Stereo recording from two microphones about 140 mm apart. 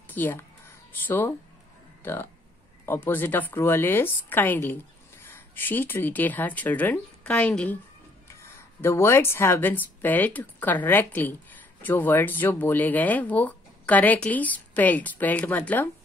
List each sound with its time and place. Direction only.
0.1 s speech: 15° left (ahead or behind)
2.8 s speech: 15° left (ahead or behind)